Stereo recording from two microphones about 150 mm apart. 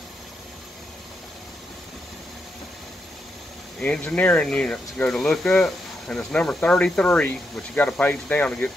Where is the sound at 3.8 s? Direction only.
10° left (ahead or behind).